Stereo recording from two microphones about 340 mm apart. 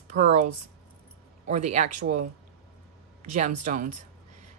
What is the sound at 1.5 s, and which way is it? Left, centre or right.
Speech, right.